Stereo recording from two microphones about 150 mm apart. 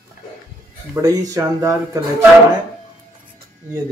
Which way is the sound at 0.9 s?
20° right (ahead or behind).